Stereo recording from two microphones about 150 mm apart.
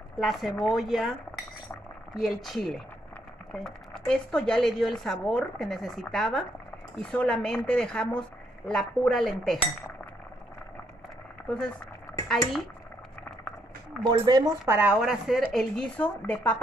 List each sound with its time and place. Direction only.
0.2 s speech: centre (ahead or behind)
2.1 s speech: centre (ahead or behind)
11.4 s speech: 5° left (ahead or behind)
14.0 s speech: 25° right (ahead or behind)
14.8 s speech: 5° right (ahead or behind); by 16.6 s 10° left (ahead or behind)